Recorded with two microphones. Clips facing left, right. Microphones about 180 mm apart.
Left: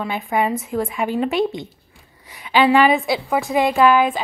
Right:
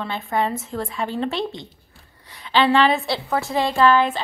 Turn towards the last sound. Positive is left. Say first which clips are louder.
# left 2 dB
turn(degrees=15)  # may be behind; listen again after turning